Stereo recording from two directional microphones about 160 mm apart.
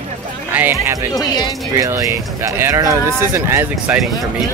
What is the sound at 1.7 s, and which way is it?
Speech, 20° right (ahead or behind).